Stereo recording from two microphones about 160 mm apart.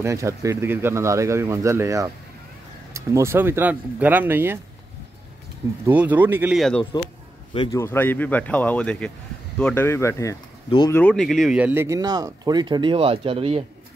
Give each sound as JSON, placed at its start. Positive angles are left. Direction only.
{"t": 0.0, "sound": "speech", "side_deg": -15}
{"t": 5.9, "sound": "speech", "side_deg": -10}
{"t": 6.8, "sound": "speech", "side_deg": 25}
{"t": 7.7, "sound": "speech", "side_deg": 15}